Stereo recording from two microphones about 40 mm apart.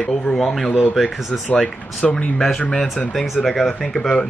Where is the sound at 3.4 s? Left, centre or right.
Centre.